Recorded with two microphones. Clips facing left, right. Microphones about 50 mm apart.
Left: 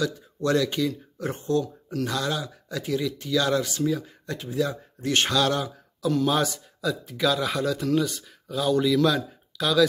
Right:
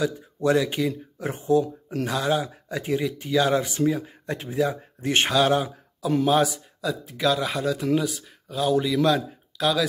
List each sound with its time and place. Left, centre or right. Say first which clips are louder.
0.0 s speech: right 3 dB; centre
1.6 s speech: right 2 dB; right
6.2 s speech: right 3 dB; centre